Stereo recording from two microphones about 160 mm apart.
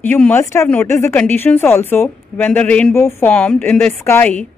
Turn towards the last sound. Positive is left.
turn(degrees=10)  # may be behind; listen again after turning